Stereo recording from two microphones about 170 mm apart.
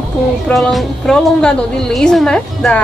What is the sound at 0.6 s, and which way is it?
A woman's voice, centre (ahead or behind).